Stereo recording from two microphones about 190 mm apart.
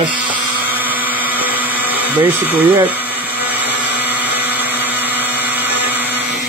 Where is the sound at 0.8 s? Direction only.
10° right (ahead or behind).